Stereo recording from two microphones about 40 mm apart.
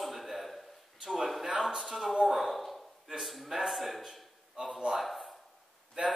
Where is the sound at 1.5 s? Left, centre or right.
Right.